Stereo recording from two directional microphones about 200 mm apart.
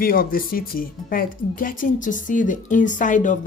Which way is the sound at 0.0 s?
45° left (ahead or behind).